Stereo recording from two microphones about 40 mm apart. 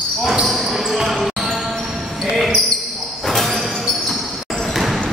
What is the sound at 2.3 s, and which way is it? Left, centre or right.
Basketball bounce, centre.